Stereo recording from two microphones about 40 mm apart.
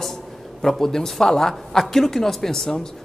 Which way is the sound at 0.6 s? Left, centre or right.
Centre.